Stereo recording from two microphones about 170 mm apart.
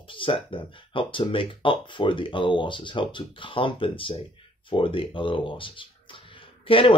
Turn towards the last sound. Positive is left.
turn(degrees=30)  # may be behind; listen again after turning